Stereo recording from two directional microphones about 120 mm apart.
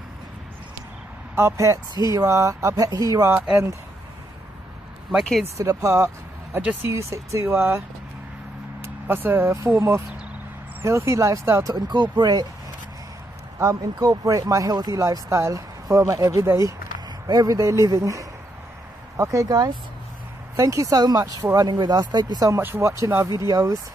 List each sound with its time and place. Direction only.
1.3 s speech: 20° right (ahead or behind)
3.3 s speech: 10° right (ahead or behind)
5.6 s speech: 30° right (ahead or behind)
6.6 s speech: 10° right (ahead or behind)
6.9 s speech: 25° right (ahead or behind)
8.8 s speech: 15° right (ahead or behind)
11.7 s speech: 35° right (ahead or behind)
13.6 s speech: 25° right (ahead or behind)
22.6 s speech: 20° right (ahead or behind)